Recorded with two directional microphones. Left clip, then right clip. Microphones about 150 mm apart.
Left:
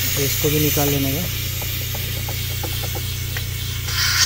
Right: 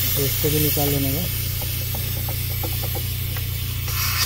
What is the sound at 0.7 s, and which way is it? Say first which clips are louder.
Speech: left 3 dB; 20° right (ahead or behind).